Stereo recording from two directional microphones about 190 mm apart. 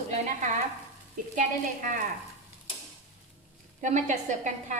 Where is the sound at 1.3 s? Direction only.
45° right (ahead or behind).